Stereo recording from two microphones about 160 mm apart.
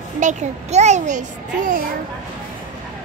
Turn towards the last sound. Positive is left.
turn(degrees=-55)  # may be behind; listen again after turning